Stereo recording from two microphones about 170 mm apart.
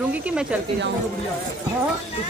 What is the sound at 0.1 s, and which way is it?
Speech, 5° right (ahead or behind).